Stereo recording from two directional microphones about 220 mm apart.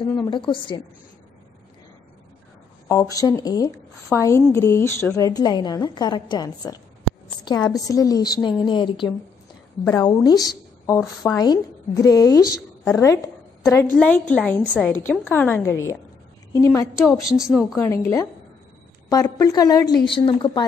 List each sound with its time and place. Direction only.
0.3 s a woman's voice: 20° left (ahead or behind)
2.9 s a woman's voice: 15° left (ahead or behind)
17.3 s speech: centre (ahead or behind)
17.7 s a woman's voice: 15° left (ahead or behind)